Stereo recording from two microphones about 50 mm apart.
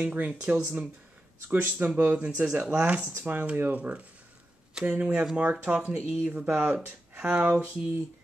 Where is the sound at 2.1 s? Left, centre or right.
Right.